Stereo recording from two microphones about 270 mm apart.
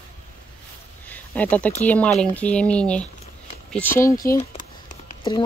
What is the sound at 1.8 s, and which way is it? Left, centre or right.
Speech, centre.